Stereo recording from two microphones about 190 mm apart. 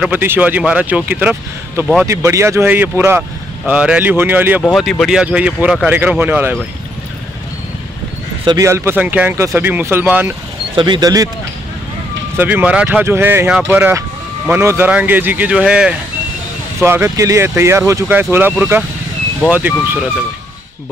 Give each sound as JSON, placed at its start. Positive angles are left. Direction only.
{"t": 0.0, "sound": "speech", "side_deg": -10}
{"t": 8.5, "sound": "speech", "side_deg": -15}
{"t": 10.8, "sound": "speech", "side_deg": -20}
{"t": 12.4, "sound": "speech", "side_deg": -10}